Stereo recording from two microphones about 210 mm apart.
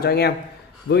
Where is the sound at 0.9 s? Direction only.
65° left (ahead or behind).